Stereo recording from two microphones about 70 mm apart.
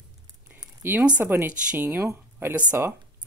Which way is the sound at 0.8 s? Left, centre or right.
Right.